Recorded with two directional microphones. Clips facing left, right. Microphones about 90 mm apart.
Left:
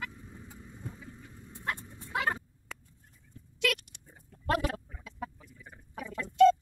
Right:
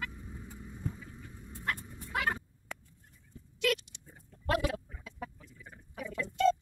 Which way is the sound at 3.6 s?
90° left.